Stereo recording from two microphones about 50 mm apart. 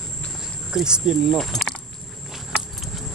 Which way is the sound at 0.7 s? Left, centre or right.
Centre.